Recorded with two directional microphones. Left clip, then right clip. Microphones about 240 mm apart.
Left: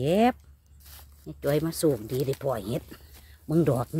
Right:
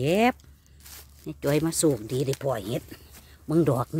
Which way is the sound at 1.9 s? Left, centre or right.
Centre.